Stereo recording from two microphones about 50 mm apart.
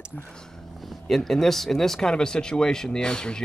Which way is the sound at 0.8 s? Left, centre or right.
Centre.